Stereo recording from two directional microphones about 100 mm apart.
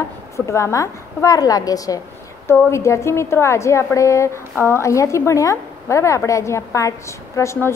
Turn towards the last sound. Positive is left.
turn(degrees=30)  # may be behind; listen again after turning